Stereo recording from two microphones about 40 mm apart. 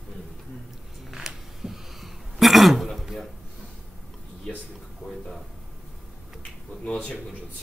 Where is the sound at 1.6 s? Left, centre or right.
Centre.